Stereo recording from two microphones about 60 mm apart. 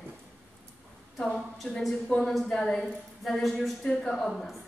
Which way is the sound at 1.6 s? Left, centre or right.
Centre.